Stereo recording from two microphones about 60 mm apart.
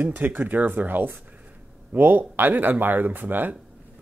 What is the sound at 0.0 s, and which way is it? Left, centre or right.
A man's voice, right.